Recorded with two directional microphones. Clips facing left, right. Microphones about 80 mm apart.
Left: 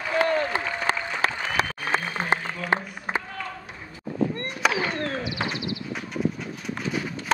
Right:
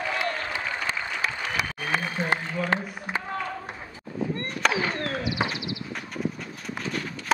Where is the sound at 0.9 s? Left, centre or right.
Left.